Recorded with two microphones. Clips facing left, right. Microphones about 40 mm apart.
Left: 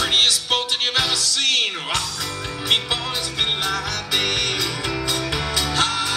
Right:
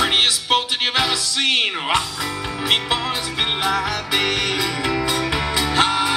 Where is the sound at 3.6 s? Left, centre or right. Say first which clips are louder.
Right 4 dB; centre.